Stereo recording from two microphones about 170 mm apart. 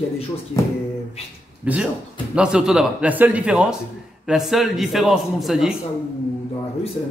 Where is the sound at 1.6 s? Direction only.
10° right (ahead or behind).